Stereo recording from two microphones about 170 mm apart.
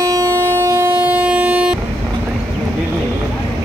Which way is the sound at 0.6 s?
15° right (ahead or behind).